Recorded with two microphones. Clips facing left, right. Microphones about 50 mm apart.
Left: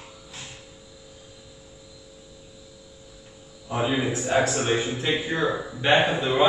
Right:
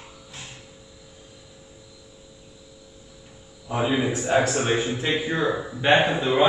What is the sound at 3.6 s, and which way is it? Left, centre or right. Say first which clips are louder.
Speech: right 1 dB; centre.